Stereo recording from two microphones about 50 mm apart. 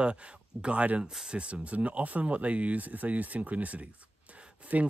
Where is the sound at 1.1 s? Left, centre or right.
Centre.